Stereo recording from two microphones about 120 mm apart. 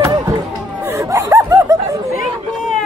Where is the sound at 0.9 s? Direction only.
25° right (ahead or behind).